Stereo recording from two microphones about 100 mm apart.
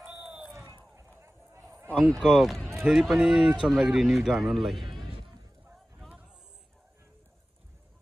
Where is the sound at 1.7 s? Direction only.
25° right (ahead or behind).